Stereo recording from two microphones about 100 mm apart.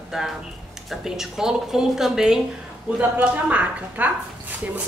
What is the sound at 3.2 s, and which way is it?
Speech, 15° right (ahead or behind).